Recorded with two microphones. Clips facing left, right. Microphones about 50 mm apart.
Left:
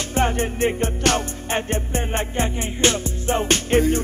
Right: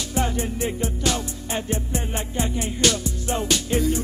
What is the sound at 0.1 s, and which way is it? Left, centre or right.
Music, left.